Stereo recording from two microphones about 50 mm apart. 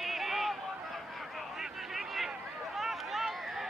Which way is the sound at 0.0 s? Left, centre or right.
Centre.